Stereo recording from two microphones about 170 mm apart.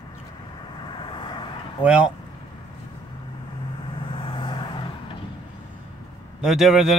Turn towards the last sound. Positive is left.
turn(degrees=0)  # may be behind; listen again after turning